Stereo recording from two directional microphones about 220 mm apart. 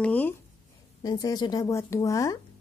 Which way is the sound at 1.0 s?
15° left (ahead or behind).